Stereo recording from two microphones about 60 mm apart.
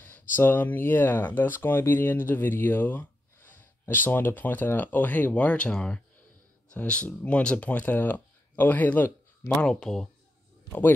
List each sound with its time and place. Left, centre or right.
0.0 s speech: left
10.7 s speech: left